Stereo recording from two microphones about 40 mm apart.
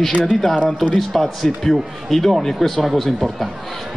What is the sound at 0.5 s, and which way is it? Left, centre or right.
Speech, left.